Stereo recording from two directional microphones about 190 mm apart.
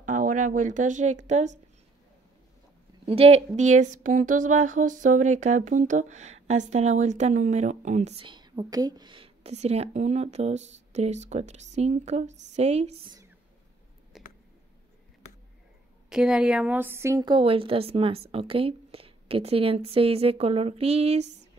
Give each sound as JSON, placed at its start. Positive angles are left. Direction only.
{"t": 0.0, "sound": "speech", "side_deg": -45}
{"t": 3.1, "sound": "speech", "side_deg": -30}
{"t": 8.3, "sound": "speech", "side_deg": -25}
{"t": 14.1, "sound": "a sound", "side_deg": 0}
{"t": 16.1, "sound": "a woman's voice", "side_deg": -5}